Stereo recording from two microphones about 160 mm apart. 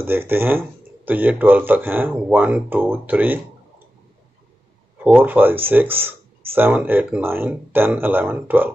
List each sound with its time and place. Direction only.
0.0 s speech: 15° right (ahead or behind)
5.0 s speech: 10° right (ahead or behind)
5.9 s a sound: 35° right (ahead or behind)
6.7 s speech: 10° right (ahead or behind)